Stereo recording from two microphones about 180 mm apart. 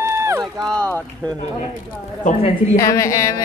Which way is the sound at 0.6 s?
5° left (ahead or behind).